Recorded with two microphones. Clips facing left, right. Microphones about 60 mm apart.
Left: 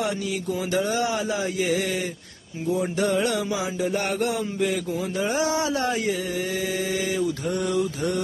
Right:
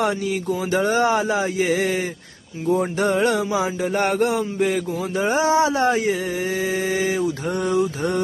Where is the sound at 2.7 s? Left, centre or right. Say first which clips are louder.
Right 4 dB; right.